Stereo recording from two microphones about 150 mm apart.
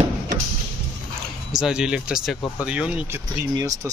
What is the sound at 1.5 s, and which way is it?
Speech, 5° right (ahead or behind).